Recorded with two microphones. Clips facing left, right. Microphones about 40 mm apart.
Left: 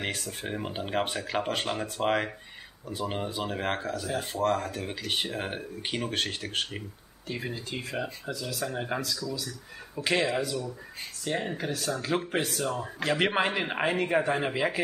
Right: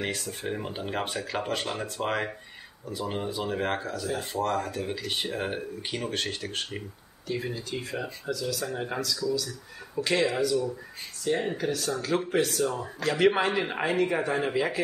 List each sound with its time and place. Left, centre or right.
0.0 s speech: centre
2.0 s speech: centre
3.0 s speech: left
3.4 s speech: centre
8.3 s speech: left
8.6 s speech: centre
9.2 s speech: centre
10.0 s speech: centre
11.5 s speech: centre